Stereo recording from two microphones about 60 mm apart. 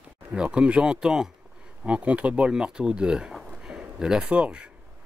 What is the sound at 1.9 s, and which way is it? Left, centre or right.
Speech, right.